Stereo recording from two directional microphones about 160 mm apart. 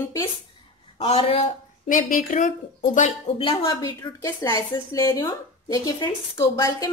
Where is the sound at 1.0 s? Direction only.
35° left (ahead or behind).